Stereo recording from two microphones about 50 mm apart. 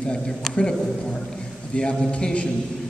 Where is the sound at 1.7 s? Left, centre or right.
Centre.